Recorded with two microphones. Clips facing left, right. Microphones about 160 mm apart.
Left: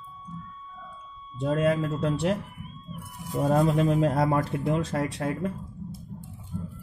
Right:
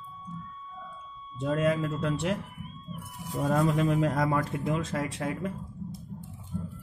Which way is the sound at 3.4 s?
30° left (ahead or behind).